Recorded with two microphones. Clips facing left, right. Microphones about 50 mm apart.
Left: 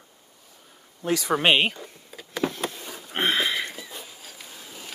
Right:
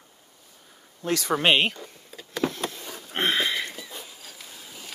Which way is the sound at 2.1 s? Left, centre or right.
Centre.